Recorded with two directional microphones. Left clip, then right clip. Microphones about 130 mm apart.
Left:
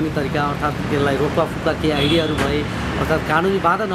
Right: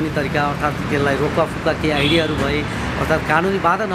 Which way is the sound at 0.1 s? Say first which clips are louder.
Right 1 dB; 5° right (ahead or behind).